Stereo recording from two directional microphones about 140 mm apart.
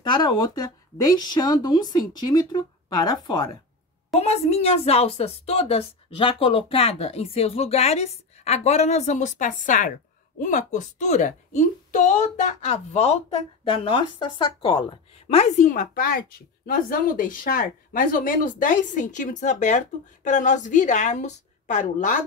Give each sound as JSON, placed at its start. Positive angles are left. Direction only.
{"t": 0.0, "sound": "speech", "side_deg": 30}
{"t": 4.2, "sound": "a woman's voice", "side_deg": 50}
{"t": 13.7, "sound": "a woman's voice", "side_deg": 35}